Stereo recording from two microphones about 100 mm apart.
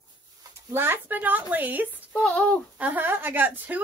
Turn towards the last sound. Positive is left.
turn(degrees=-20)  # may be behind; listen again after turning